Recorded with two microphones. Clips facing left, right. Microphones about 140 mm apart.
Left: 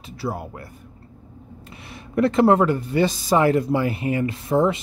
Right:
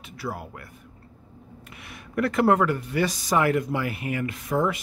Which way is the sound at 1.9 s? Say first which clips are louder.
Left 6 dB; 25° left (ahead or behind).